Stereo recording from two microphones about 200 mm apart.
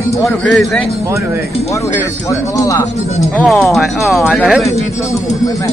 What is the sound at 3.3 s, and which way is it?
Speech, centre (ahead or behind).